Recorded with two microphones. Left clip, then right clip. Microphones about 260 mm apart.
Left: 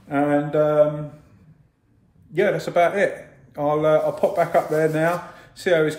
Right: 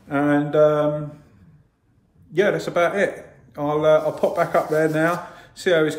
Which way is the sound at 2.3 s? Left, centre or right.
Centre.